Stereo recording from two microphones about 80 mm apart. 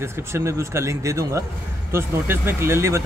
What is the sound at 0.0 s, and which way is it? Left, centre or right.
A man's voice, right.